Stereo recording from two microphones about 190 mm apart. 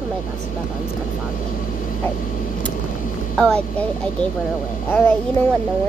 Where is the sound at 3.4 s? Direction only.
5° left (ahead or behind).